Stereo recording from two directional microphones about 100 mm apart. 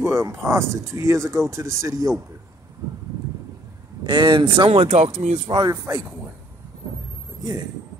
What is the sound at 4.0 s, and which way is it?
Speech, 50° right (ahead or behind).